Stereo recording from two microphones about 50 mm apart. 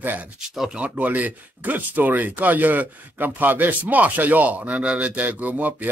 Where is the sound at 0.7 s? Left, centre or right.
Right.